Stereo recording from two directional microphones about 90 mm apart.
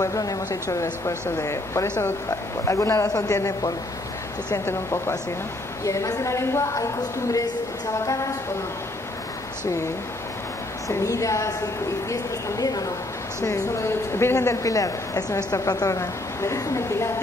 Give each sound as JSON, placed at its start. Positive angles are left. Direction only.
{"t": 0.0, "sound": "a woman's voice", "side_deg": 40}
{"t": 10.9, "sound": "a woman's voice", "side_deg": 35}